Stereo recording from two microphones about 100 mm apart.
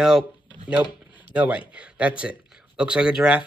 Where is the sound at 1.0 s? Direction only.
15° right (ahead or behind).